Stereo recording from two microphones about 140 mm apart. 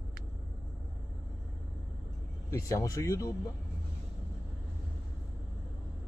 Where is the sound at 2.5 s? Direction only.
25° left (ahead or behind).